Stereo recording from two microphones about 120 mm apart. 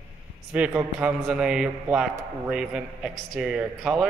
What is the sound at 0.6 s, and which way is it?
A man's voice, 10° right (ahead or behind).